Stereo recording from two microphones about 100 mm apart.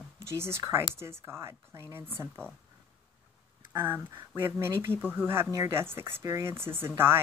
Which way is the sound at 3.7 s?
20° right (ahead or behind).